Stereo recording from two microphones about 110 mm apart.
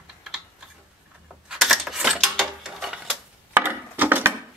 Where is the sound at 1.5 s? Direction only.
5° right (ahead or behind).